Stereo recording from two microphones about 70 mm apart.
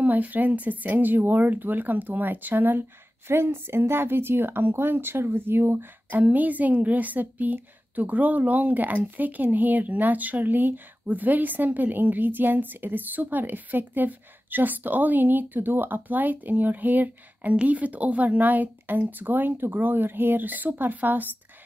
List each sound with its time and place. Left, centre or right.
0.0 s speech: right